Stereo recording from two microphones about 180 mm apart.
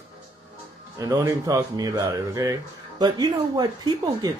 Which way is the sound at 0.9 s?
20° right (ahead or behind).